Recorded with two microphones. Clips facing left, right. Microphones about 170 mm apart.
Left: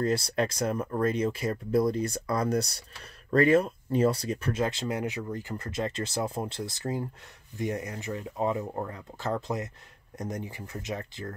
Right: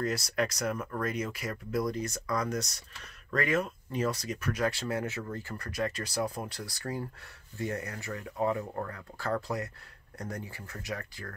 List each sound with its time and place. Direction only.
0.0 s speech: 30° left (ahead or behind)